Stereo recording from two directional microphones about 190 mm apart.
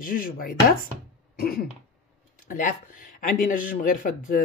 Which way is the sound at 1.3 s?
50° left (ahead or behind).